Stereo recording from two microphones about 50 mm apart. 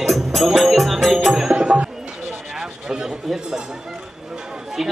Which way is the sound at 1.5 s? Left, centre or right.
Right.